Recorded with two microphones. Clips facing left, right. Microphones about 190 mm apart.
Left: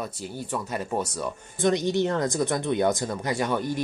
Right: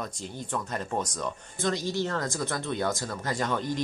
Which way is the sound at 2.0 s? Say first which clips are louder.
Left 6 dB; 20° left (ahead or behind).